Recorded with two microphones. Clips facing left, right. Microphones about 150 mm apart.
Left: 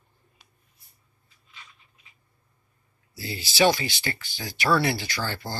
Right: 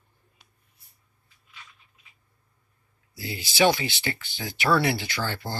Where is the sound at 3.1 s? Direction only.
15° right (ahead or behind).